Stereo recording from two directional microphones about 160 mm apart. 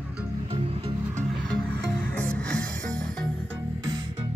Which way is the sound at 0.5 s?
35° right (ahead or behind).